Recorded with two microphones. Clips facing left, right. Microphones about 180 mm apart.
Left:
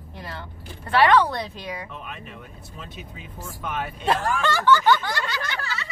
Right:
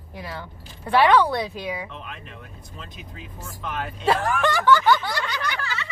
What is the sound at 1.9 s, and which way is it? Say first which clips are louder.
Speech: left 1 dB; 5° left (ahead or behind).